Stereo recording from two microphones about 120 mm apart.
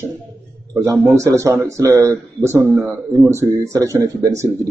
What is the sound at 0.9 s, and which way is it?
Speech, 20° right (ahead or behind).